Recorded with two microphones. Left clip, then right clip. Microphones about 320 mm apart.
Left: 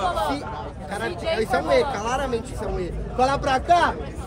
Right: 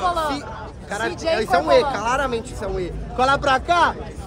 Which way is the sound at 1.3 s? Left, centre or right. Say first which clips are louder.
Right 4 dB; centre.